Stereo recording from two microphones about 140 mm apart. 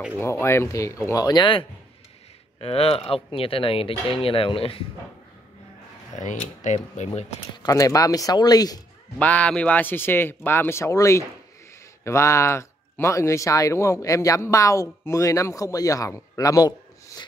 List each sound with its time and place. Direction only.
0.2 s speech: 20° left (ahead or behind); by 4.8 s 40° left (ahead or behind)
6.1 s speech: 60° left (ahead or behind)
7.5 s speech: 25° left (ahead or behind)
9.2 s speech: 10° left (ahead or behind); by 16.7 s 25° left (ahead or behind)
17.1 s a sound: 25° left (ahead or behind)